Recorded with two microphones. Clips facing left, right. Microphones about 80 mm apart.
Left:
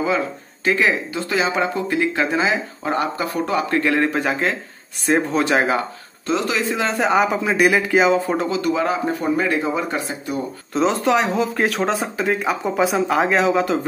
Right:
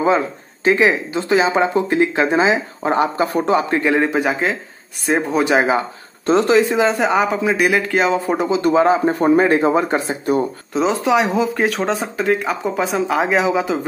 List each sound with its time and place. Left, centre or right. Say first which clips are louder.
0.7 s speech: right 4 dB; centre
6.2 s speech: right 8 dB; right
6.9 s speech: right 1 dB; centre
8.3 s speech: right 3 dB; centre
8.5 s speech: right 6 dB; right
9.2 s speech: right 8 dB; right
10.7 s speech: even; centre